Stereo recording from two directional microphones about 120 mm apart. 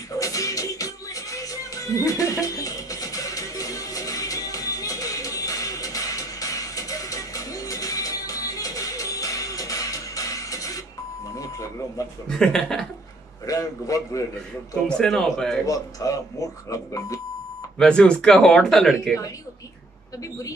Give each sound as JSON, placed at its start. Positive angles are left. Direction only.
{"t": 0.1, "sound": "music", "side_deg": 30}
{"t": 11.3, "sound": "reversing beeps", "side_deg": 30}
{"t": 12.3, "sound": "a man's voice", "side_deg": 5}
{"t": 13.5, "sound": "speech", "side_deg": 30}
{"t": 14.9, "sound": "a man's voice", "side_deg": 5}
{"t": 15.6, "sound": "speech", "side_deg": 30}
{"t": 17.7, "sound": "speech", "side_deg": 5}